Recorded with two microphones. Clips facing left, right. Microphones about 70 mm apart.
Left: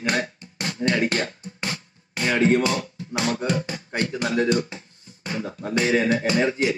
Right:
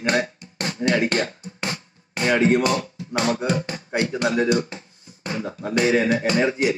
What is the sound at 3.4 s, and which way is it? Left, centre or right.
Music, right.